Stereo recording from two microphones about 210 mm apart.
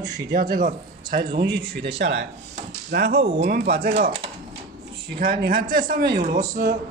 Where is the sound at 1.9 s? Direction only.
55° right (ahead or behind).